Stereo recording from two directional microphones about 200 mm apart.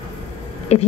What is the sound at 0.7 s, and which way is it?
Speech, 30° left (ahead or behind).